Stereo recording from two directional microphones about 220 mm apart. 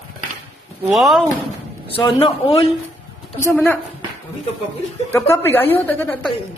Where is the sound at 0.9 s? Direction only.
Centre (ahead or behind).